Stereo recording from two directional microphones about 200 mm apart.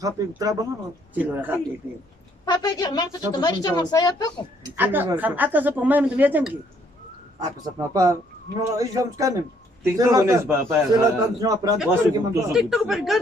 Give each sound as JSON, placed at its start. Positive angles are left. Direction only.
{"t": 0.0, "sound": "speech", "side_deg": -15}
{"t": 2.4, "sound": "a woman's voice", "side_deg": 20}
{"t": 4.7, "sound": "a man's voice", "side_deg": -10}
{"t": 12.5, "sound": "speech", "side_deg": 0}